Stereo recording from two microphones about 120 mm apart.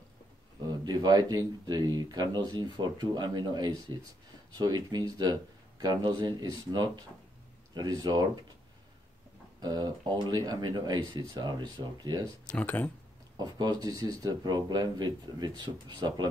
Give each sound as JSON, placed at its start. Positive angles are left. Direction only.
{"t": 0.7, "sound": "speech", "side_deg": -35}
{"t": 9.6, "sound": "speech", "side_deg": -35}
{"t": 12.4, "sound": "speech", "side_deg": 10}
{"t": 13.4, "sound": "speech", "side_deg": -35}